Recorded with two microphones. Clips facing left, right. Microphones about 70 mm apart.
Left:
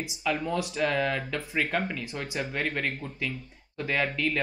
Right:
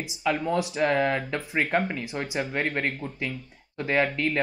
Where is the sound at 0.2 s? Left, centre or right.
Centre.